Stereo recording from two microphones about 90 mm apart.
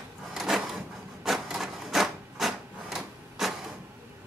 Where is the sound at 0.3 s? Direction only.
5° right (ahead or behind).